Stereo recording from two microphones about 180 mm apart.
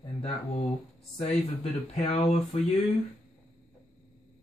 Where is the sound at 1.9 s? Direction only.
35° left (ahead or behind).